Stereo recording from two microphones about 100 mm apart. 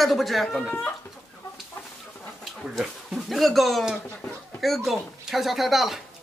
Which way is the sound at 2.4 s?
Centre (ahead or behind).